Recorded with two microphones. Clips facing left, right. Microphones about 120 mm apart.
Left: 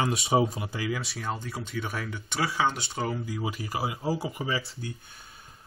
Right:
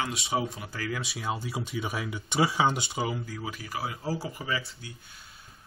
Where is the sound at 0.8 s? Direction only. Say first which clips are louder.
Left 1 dB; centre (ahead or behind).